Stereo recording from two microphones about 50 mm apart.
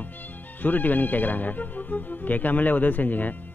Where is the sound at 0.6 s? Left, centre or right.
Left.